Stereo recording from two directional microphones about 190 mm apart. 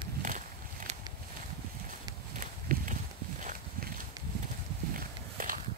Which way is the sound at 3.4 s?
45° right (ahead or behind).